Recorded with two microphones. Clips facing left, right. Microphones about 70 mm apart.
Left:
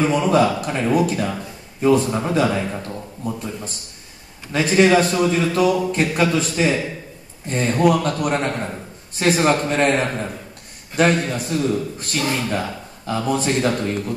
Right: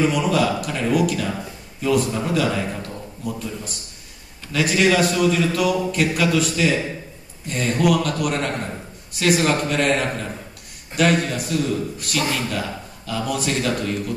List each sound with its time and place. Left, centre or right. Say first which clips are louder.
0.0 s a man's voice: left 3 dB; left